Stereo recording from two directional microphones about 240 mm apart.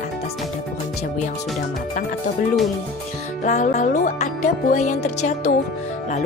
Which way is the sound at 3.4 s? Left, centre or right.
Left.